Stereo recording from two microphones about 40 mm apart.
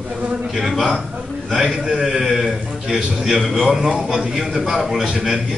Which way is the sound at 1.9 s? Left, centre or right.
Centre.